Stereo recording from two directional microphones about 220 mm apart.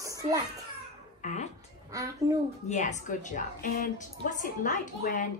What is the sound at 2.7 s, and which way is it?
A woman's voice, 35° left (ahead or behind).